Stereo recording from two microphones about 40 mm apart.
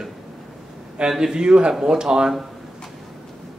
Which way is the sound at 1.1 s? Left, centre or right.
Centre.